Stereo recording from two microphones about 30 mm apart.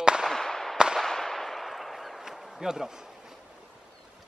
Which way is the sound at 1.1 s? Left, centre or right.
Centre.